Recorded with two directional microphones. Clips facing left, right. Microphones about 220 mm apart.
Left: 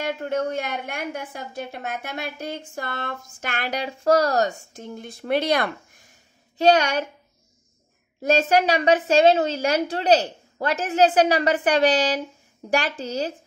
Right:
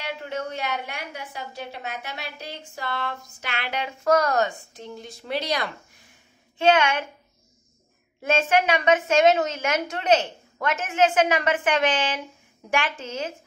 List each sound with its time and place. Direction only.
0.0 s a woman's voice: 50° left (ahead or behind)
6.6 s a woman's voice: 40° left (ahead or behind)
8.2 s a woman's voice: 40° left (ahead or behind)